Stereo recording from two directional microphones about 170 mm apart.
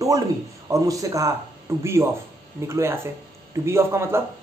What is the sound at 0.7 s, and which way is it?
A man's voice, 20° right (ahead or behind).